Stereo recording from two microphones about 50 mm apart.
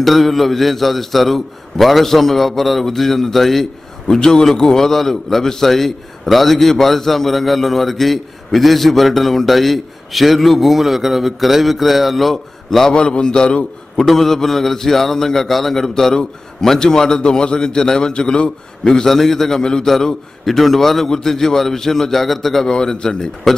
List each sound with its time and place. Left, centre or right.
0.0 s a man's voice: centre
12.9 s a man's voice: centre
14.0 s a man's voice: centre